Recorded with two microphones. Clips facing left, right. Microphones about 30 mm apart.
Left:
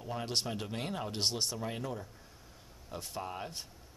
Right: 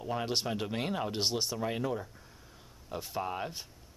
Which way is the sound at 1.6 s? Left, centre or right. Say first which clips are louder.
Right 5 dB; centre.